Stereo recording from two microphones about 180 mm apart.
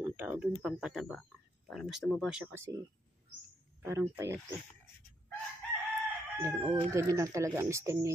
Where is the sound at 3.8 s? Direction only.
15° right (ahead or behind).